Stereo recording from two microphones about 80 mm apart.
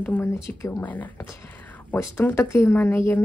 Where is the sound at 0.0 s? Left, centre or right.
Left.